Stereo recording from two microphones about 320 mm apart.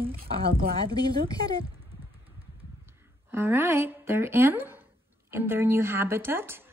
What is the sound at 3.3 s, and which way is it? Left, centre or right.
Speech, centre.